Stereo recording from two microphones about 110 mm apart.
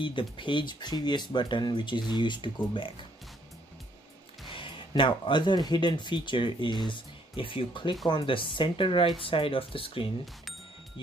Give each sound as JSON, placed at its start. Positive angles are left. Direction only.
{"t": 0.0, "sound": "speech", "side_deg": 50}
{"t": 4.5, "sound": "speech", "side_deg": 50}